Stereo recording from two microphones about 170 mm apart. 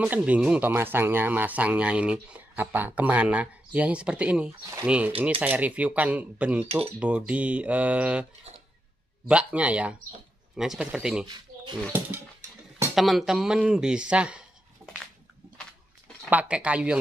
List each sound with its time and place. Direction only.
0.0 s speech: 10° right (ahead or behind)
9.3 s speech: 5° right (ahead or behind)
11.5 s a sound: 55° right (ahead or behind)
12.9 s speech: centre (ahead or behind)
16.3 s speech: 10° right (ahead or behind)